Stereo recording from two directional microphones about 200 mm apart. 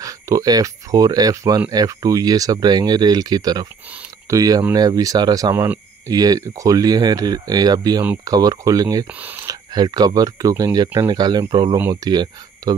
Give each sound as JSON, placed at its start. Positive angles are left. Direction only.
{"t": 0.0, "sound": "speech", "side_deg": -15}